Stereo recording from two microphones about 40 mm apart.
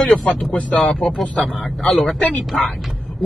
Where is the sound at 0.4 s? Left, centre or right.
Left.